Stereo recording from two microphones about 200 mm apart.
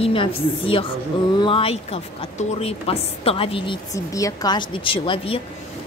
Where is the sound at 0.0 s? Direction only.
25° left (ahead or behind).